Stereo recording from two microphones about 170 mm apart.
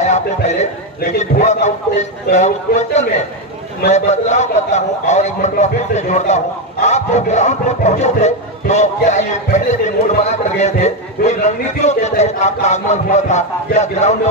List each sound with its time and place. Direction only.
0.0 s a man's voice: 40° left (ahead or behind)